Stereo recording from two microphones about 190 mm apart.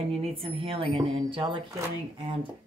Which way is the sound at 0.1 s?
30° right (ahead or behind).